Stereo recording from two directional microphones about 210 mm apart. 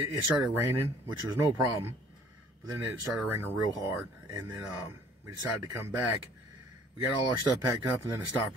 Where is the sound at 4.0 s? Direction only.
10° right (ahead or behind).